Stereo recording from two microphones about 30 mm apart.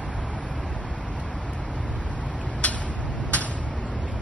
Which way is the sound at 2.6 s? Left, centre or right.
Left.